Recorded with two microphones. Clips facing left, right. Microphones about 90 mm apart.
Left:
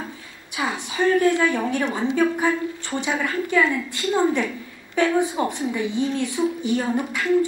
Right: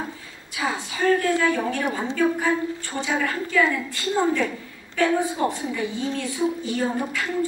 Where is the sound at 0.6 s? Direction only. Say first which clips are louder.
Left 2 dB; 20° left (ahead or behind).